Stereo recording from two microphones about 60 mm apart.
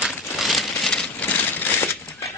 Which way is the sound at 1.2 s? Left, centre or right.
Left.